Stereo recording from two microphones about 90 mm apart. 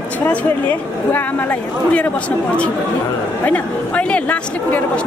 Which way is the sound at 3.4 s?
15° left (ahead or behind).